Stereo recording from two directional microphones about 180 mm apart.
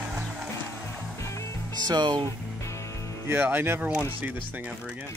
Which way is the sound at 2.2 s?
15° left (ahead or behind).